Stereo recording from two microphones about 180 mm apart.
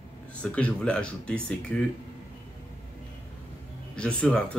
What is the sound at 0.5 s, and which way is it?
Speech, 5° left (ahead or behind).